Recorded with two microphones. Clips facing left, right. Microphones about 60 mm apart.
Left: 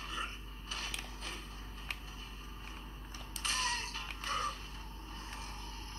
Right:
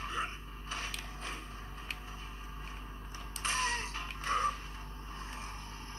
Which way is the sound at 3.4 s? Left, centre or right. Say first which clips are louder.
Right 3 dB; right.